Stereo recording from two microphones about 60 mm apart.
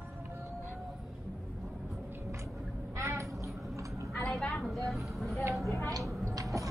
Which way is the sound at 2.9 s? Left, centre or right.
Right.